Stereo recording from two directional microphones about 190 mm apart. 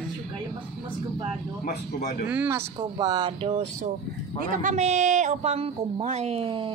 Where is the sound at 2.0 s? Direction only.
40° left (ahead or behind).